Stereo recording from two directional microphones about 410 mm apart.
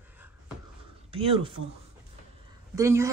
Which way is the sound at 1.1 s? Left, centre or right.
Centre.